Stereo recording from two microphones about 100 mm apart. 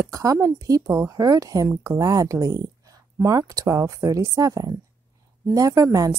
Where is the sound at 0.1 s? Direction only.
35° right (ahead or behind).